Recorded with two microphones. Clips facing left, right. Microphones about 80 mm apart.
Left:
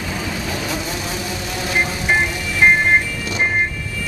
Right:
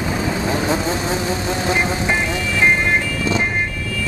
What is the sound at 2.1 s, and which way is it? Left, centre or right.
Music, left.